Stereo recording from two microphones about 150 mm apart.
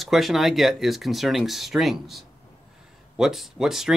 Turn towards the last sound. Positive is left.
turn(degrees=0)  # may be behind; listen again after turning